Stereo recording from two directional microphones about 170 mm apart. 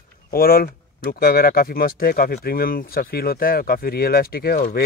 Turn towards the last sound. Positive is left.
turn(degrees=65)  # may be behind; listen again after turning